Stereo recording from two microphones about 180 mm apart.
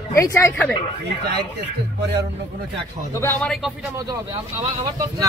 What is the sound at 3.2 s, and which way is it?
Speech, 5° left (ahead or behind).